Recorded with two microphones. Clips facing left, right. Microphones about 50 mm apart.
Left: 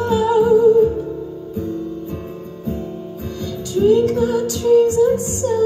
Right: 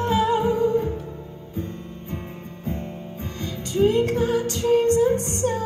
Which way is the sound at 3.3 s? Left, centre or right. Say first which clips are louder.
Left 2 dB; right.